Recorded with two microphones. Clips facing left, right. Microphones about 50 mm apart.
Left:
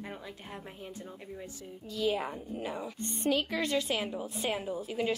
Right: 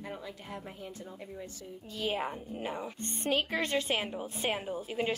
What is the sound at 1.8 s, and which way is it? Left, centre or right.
A woman's voice, right.